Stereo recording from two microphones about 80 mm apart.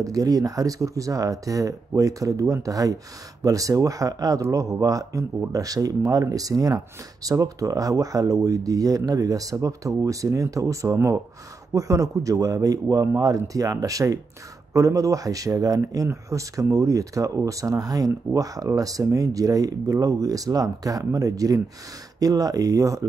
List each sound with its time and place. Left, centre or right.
0.0 s speech: right